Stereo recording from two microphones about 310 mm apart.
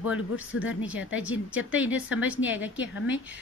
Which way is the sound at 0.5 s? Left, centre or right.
Left.